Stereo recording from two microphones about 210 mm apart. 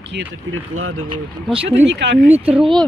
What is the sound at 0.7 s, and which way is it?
Speech, 85° right.